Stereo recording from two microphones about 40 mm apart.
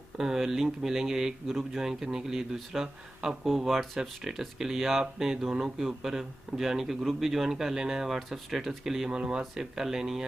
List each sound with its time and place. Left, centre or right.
0.2 s a man's voice: centre
9.1 s speech: right
9.4 s a man's voice: centre